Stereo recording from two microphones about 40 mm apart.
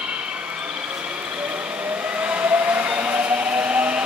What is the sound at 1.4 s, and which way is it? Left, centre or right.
Train, right.